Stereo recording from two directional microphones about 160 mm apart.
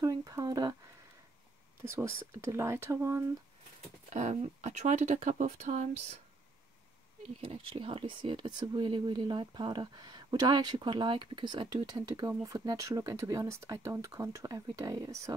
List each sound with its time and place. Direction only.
0.0 s speech: 25° right (ahead or behind)
1.8 s speech: 15° right (ahead or behind)
4.1 s speech: 45° right (ahead or behind)
7.3 s speech: 35° right (ahead or behind)